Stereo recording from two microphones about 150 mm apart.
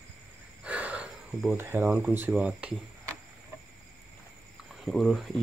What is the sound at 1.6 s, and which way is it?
Speech, 15° right (ahead or behind).